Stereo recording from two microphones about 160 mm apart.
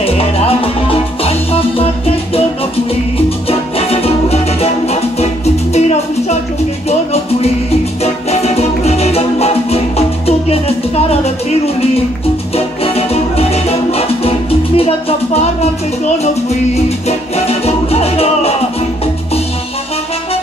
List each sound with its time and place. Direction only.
0.0 s music: 35° left (ahead or behind)
3.4 s music: 35° left (ahead or behind)
12.5 s music: 40° left (ahead or behind)
17.5 s music: 40° left (ahead or behind)